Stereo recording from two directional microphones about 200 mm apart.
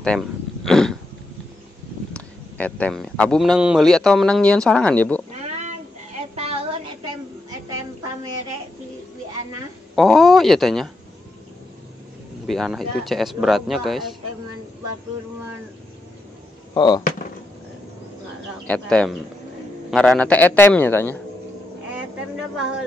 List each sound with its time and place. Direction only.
0.0 s a sound: 5° left (ahead or behind)
2.1 s a man's voice: 5° left (ahead or behind)
5.3 s a sound: 35° right (ahead or behind)
9.9 s a man's voice: centre (ahead or behind)
12.4 s a man's voice: centre (ahead or behind)
16.7 s speech: 20° left (ahead or behind)
18.7 s a man's voice: 5° left (ahead or behind)